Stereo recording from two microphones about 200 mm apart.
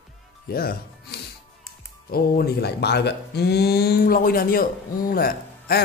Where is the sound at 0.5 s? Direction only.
50° left (ahead or behind).